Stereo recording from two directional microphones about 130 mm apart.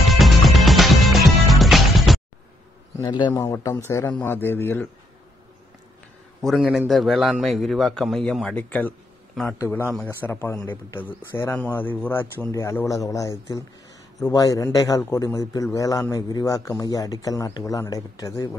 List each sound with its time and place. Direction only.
0.1 s music: centre (ahead or behind)
3.0 s speech: 35° left (ahead or behind)
3.3 s a man's voice: 20° left (ahead or behind)
6.4 s a man's voice: centre (ahead or behind)
9.7 s a man's voice: 15° left (ahead or behind)